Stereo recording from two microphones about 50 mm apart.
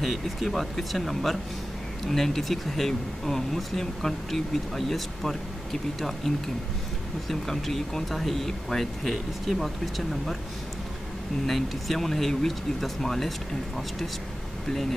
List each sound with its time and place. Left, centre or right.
0.0 s speech: centre
11.4 s speech: centre
14.7 s speech: centre